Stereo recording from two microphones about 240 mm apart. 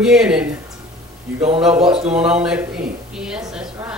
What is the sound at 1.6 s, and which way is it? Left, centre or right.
A man's voice, centre.